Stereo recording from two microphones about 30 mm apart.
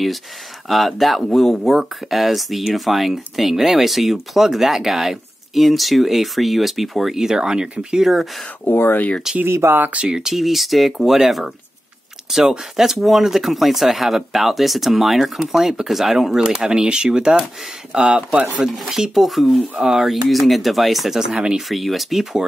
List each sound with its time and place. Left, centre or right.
0.7 s speech: centre
5.5 s speech: centre
7.3 s speech: right
8.0 s speech: centre
8.6 s speech: left
10.0 s speech: right
10.3 s speech: centre
16.4 s speech: right
18.7 s speech: centre
19.8 s speech: centre
20.1 s speech: centre
21.1 s speech: centre